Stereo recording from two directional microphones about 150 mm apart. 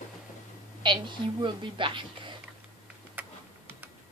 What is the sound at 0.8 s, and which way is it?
A woman's voice, 30° right (ahead or behind).